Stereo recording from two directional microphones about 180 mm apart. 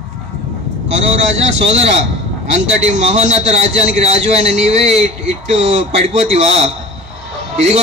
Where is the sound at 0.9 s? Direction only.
40° right (ahead or behind).